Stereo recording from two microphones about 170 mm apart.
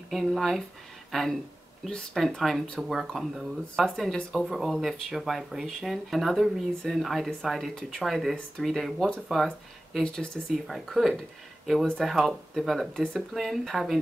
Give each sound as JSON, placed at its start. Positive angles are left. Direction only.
{"t": 0.1, "sound": "speech", "side_deg": 0}